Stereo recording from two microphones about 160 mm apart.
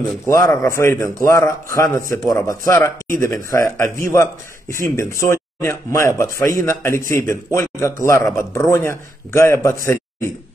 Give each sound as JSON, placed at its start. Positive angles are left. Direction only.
{"t": 0.3, "sound": "a man's voice", "side_deg": 20}